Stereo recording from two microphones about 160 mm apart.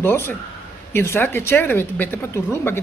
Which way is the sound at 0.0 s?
15° left (ahead or behind).